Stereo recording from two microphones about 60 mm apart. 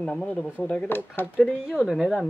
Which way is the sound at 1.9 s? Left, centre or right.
Centre.